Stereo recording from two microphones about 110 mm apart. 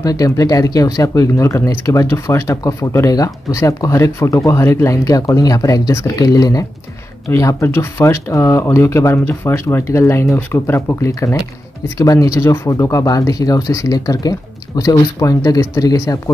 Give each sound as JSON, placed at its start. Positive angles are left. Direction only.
{"t": 0.0, "sound": "speech", "side_deg": 35}